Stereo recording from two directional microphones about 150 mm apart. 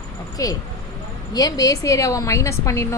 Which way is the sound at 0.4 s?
25° left (ahead or behind).